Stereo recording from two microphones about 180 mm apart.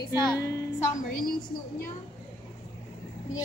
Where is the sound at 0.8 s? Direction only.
50° left (ahead or behind).